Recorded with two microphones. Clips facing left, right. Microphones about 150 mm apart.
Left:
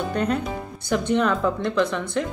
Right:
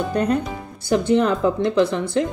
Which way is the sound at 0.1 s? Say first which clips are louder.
Right 3 dB; 35° right (ahead or behind).